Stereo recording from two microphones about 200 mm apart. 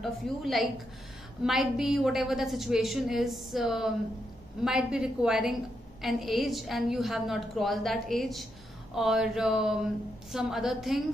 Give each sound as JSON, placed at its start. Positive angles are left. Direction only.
{"t": 0.0, "sound": "a woman's voice", "side_deg": 0}